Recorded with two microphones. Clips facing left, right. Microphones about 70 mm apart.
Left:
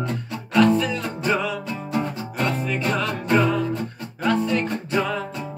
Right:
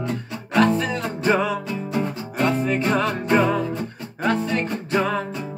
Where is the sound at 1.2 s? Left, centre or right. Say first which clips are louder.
Right 3 dB; right.